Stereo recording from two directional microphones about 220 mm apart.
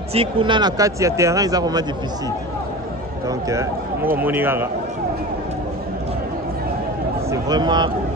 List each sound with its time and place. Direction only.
0.1 s speech: 25° right (ahead or behind)
3.3 s speech: 15° right (ahead or behind)
7.2 s speech: 20° right (ahead or behind)